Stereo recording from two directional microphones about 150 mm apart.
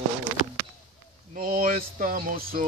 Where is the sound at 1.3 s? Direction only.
70° right (ahead or behind).